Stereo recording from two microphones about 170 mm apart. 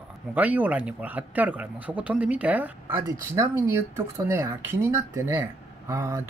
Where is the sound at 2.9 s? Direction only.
20° right (ahead or behind).